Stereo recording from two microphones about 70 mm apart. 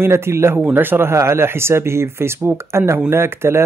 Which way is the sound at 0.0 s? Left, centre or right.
Right.